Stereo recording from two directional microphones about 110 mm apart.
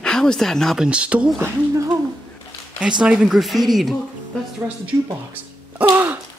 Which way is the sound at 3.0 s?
5° right (ahead or behind).